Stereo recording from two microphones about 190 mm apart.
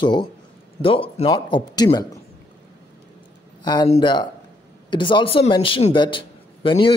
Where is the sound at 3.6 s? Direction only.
20° left (ahead or behind).